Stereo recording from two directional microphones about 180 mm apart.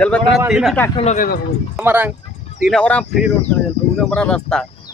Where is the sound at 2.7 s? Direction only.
5° left (ahead or behind).